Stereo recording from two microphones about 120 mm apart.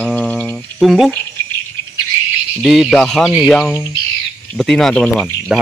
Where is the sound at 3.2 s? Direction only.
5° right (ahead or behind).